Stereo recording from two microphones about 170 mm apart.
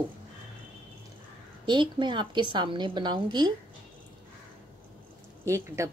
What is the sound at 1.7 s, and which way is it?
A woman's voice, 25° right (ahead or behind).